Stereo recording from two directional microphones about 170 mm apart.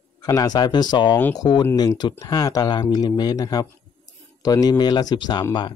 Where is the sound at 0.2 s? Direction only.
20° left (ahead or behind).